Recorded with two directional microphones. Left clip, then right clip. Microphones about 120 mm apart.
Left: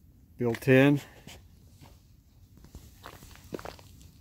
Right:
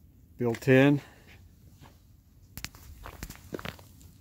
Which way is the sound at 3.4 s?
10° left (ahead or behind).